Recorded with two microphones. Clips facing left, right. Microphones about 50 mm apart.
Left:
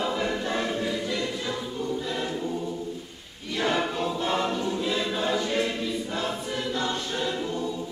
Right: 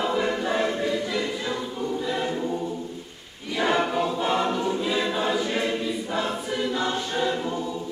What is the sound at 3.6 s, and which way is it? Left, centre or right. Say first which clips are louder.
Choir: right 3 dB; centre.